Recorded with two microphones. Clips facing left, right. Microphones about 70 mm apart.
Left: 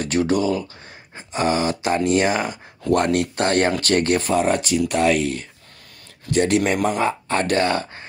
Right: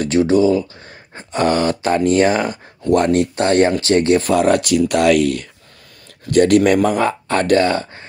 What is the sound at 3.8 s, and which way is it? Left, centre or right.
Speech, right.